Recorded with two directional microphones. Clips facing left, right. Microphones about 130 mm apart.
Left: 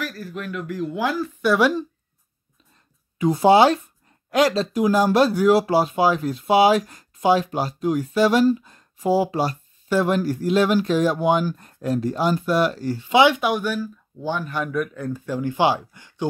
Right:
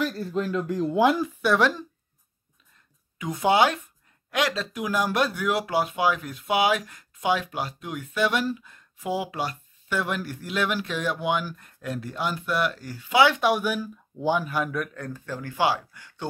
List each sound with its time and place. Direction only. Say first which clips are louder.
0.0 s speech: right 4 dB; 25° right (ahead or behind)
1.4 s speech: left 5 dB; 5° left (ahead or behind)
3.2 s speech: left 7 dB; 30° left (ahead or behind)
13.4 s speech: left 1 dB; 5° right (ahead or behind); by 16.3 s 25° left (ahead or behind)